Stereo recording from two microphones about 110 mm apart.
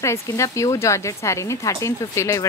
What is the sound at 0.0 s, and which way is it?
Speech, 25° left (ahead or behind).